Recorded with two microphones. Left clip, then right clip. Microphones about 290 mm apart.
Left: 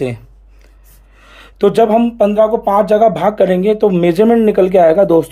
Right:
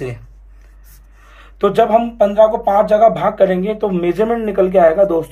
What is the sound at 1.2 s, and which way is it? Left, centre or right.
Speech, left.